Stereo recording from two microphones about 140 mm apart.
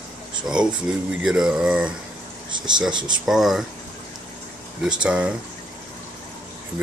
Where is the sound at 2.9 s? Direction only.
30° right (ahead or behind).